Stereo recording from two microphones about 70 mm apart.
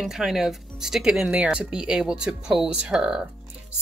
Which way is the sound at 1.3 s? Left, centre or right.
Centre.